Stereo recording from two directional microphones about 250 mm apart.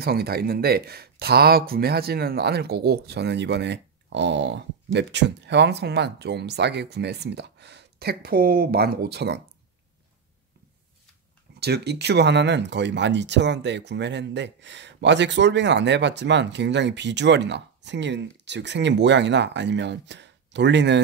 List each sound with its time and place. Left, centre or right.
0.0 s speech: right
11.6 s speech: right